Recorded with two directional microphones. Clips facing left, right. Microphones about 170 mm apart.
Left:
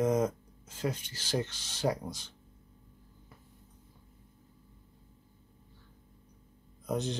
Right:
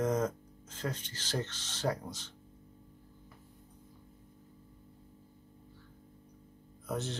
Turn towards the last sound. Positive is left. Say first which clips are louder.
# left 4 dB
turn(degrees=15)  # may be behind; listen again after turning